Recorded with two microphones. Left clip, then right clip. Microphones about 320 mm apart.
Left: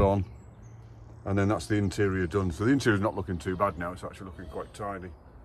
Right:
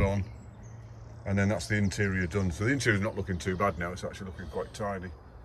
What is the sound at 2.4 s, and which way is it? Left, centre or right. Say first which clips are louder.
Speech: left 1 dB; centre.